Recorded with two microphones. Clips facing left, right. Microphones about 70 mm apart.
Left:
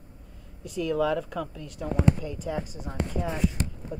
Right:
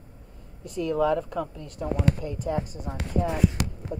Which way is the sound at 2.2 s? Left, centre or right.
Right.